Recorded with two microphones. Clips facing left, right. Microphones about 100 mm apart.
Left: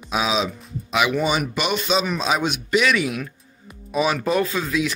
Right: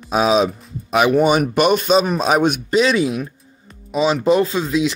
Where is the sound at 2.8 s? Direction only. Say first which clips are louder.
Right 3 dB; 30° right (ahead or behind).